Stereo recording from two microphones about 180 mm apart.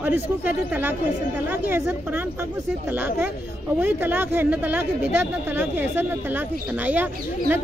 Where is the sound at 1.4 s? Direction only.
10° right (ahead or behind).